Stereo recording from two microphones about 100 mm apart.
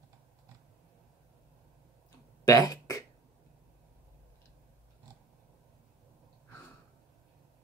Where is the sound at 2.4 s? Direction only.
35° left (ahead or behind).